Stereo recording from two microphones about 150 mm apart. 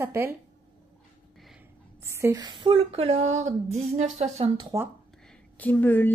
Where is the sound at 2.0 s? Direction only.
20° right (ahead or behind); by 4.5 s 50° right (ahead or behind).